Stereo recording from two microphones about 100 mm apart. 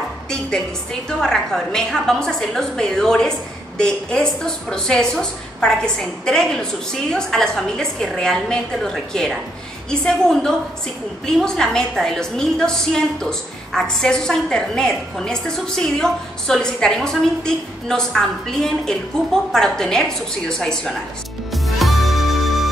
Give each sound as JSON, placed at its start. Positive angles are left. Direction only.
{"t": 1.0, "sound": "a woman's voice", "side_deg": 5}
{"t": 21.5, "sound": "music", "side_deg": 0}